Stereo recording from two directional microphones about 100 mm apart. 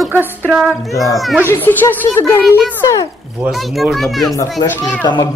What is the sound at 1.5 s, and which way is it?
A child's voice, 20° left (ahead or behind).